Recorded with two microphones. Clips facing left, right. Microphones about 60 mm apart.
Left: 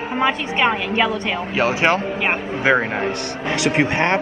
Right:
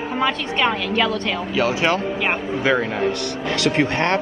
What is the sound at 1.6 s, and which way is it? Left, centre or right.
A man's voice, left.